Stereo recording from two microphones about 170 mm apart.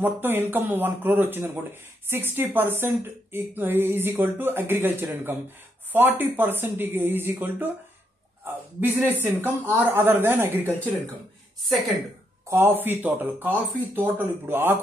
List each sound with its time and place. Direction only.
0.0 s a woman's voice: 10° right (ahead or behind)
12.4 s a woman's voice: 15° right (ahead or behind)